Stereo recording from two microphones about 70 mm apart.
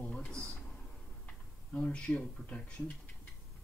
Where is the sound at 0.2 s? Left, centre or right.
Centre.